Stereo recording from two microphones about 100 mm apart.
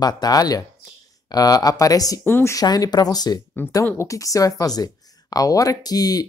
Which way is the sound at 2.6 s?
40° left (ahead or behind).